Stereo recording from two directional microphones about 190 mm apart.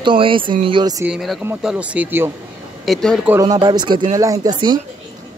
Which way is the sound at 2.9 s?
Centre (ahead or behind).